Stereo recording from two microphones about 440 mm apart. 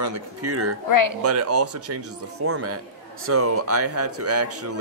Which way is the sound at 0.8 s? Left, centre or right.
Left.